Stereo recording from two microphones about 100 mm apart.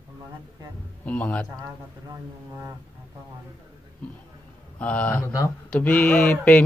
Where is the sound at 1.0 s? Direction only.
15° left (ahead or behind).